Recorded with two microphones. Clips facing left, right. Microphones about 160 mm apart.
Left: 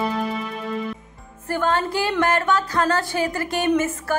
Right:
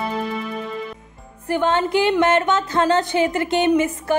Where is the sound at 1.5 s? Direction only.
20° right (ahead or behind).